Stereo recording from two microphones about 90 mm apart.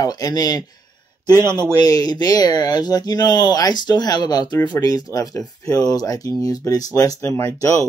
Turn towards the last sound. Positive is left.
turn(degrees=35)  # may be behind; listen again after turning